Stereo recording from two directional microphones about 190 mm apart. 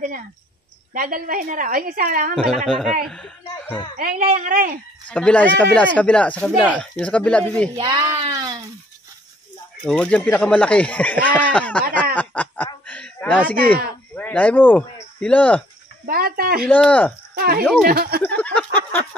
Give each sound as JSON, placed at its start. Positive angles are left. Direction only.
{"t": 0.9, "sound": "a woman's voice", "side_deg": -45}
{"t": 2.3, "sound": "speech", "side_deg": 5}
{"t": 4.0, "sound": "a woman's voice", "side_deg": -45}
{"t": 5.1, "sound": "speech", "side_deg": 5}
{"t": 7.7, "sound": "speech", "side_deg": -20}
{"t": 9.8, "sound": "speech", "side_deg": 5}
{"t": 12.2, "sound": "snicker", "side_deg": 10}
{"t": 12.8, "sound": "a sound", "side_deg": 10}
{"t": 13.7, "sound": "speech", "side_deg": 10}
{"t": 16.1, "sound": "a woman's voice", "side_deg": -50}
{"t": 16.6, "sound": "speech", "side_deg": 5}
{"t": 17.4, "sound": "a woman's voice", "side_deg": -55}
{"t": 18.2, "sound": "a sound", "side_deg": 10}